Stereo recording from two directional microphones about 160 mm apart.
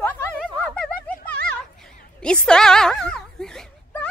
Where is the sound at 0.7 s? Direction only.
5° left (ahead or behind).